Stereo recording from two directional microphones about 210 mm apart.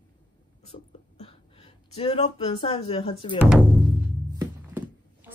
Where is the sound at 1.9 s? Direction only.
30° left (ahead or behind).